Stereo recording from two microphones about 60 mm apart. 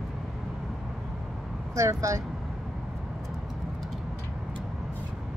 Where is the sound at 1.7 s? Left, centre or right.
Right.